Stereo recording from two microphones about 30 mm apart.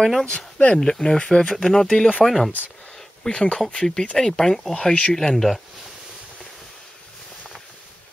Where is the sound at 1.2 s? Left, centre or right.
Left.